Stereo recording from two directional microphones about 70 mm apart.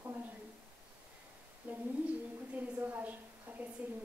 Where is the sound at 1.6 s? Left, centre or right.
Right.